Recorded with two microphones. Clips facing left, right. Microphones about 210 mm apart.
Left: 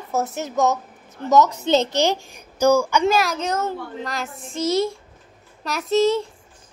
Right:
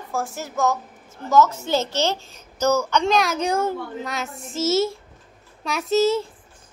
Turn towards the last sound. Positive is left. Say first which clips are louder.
# left 1 dB
turn(degrees=0)  # may be behind; listen again after turning